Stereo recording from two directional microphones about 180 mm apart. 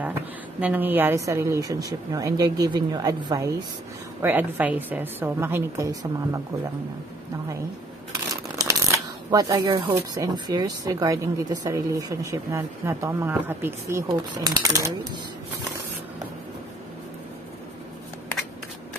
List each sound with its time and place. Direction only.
0.0 s a woman's voice: 10° right (ahead or behind)
9.3 s speech: 20° right (ahead or behind)